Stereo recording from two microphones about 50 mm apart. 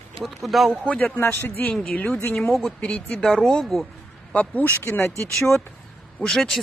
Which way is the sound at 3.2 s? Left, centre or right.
Centre.